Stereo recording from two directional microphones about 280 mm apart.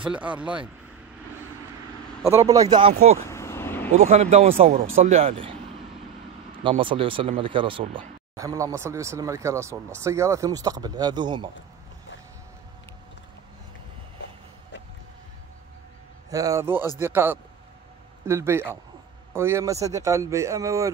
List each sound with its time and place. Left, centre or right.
0.0 s speech: centre
2.2 s speech: centre
3.3 s vehicle: centre
3.9 s speech: right
6.6 s speech: centre
16.3 s speech: centre